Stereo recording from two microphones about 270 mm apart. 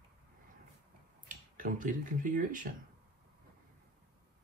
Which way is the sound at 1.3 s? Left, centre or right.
Right.